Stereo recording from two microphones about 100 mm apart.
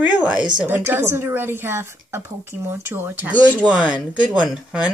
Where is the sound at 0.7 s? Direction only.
25° right (ahead or behind); by 4.9 s 5° right (ahead or behind).